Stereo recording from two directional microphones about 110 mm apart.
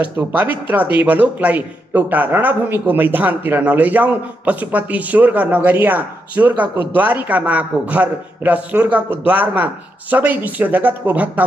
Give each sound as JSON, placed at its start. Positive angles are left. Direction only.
{"t": 0.0, "sound": "speech", "side_deg": -15}